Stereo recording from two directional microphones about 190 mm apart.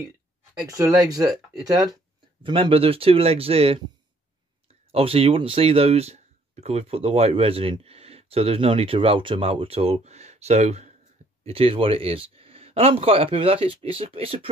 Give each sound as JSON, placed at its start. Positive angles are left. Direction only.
{"t": 0.6, "sound": "speech", "side_deg": -15}
{"t": 4.9, "sound": "speech", "side_deg": -30}